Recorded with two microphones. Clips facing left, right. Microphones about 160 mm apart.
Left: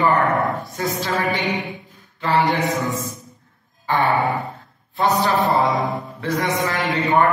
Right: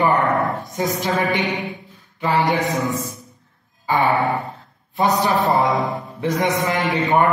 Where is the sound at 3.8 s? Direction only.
10° right (ahead or behind).